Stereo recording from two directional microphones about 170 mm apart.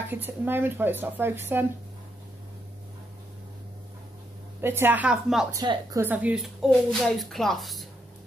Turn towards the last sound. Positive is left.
turn(degrees=0)  # may be behind; listen again after turning